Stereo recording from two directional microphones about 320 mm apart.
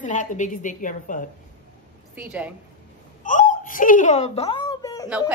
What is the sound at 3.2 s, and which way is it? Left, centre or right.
Speech, left.